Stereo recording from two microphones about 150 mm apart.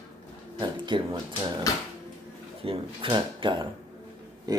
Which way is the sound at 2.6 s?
35° right (ahead or behind).